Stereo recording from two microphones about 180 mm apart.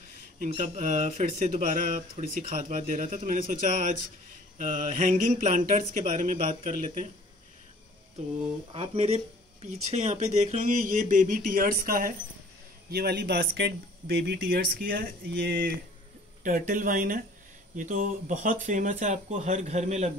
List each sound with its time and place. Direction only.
0.5 s speech: 40° right (ahead or behind)
8.7 s speech: 30° right (ahead or behind); by 12.1 s 55° right (ahead or behind)
12.9 s speech: 65° right (ahead or behind); by 20.1 s 40° right (ahead or behind)